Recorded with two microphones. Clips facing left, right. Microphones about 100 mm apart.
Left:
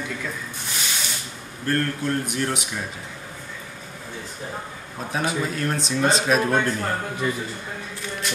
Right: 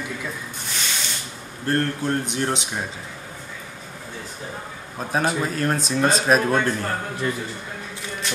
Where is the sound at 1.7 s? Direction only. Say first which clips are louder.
Right 1 dB; 25° right (ahead or behind).